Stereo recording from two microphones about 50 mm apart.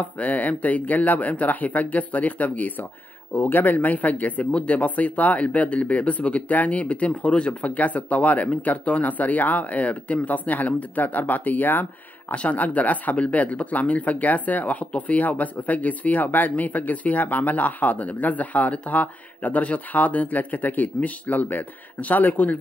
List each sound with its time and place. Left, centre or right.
0.0 s speech: left